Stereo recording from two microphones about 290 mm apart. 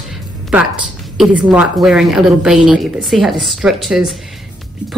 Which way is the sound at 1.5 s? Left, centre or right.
Centre.